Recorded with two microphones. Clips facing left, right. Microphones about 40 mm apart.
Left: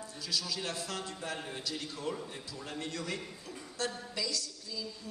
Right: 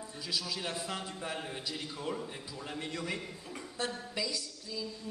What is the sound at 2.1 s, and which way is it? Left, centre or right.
A man's voice, centre.